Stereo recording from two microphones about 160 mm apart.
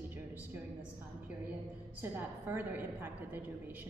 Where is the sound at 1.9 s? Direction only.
10° right (ahead or behind).